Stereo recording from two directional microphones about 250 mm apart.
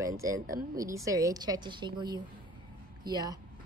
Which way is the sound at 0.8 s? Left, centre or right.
Centre.